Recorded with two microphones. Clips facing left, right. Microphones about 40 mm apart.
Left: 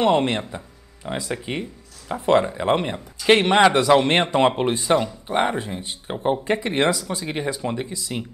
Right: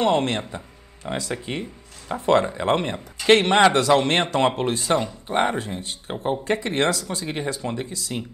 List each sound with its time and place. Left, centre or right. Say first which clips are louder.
0.0 s speech: left 2 dB; centre
0.4 s a sound: left 1 dB; centre
1.5 s speech: left 1 dB; centre
5.3 s speech: even; centre